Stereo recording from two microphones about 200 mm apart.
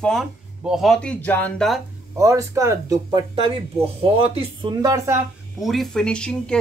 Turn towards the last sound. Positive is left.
turn(degrees=5)  # may be behind; listen again after turning